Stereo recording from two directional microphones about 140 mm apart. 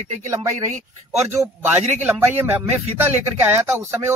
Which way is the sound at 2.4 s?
15° right (ahead or behind).